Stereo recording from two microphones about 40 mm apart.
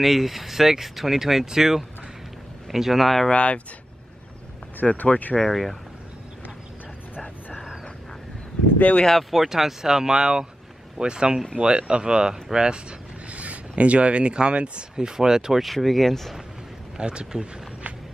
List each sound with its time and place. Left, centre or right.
0.0 s speech: centre
3.3 s speech: left
4.8 s speech: left
5.3 s speech: centre
8.7 s speech: left
9.3 s speech: centre
13.3 s speech: right
15.0 s speech: centre
15.6 s speech: centre
16.9 s speech: right